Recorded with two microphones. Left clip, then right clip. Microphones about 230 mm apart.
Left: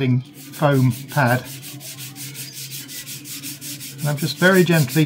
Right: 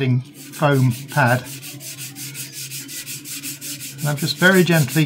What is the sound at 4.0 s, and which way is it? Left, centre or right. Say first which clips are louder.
Sanding: right 1 dB; centre.